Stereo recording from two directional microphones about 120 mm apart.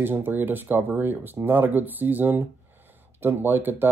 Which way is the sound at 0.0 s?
20° right (ahead or behind).